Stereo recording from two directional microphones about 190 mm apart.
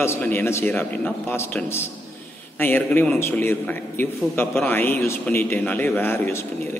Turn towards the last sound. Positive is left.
turn(degrees=10)  # may be behind; listen again after turning